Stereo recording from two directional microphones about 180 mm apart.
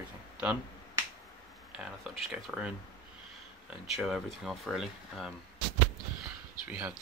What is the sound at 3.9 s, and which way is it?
Speech, 5° right (ahead or behind).